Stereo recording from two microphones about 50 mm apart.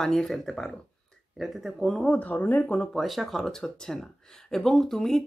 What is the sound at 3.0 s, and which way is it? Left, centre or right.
Speech, centre.